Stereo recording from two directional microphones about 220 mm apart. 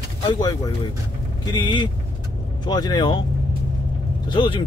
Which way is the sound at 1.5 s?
20° left (ahead or behind).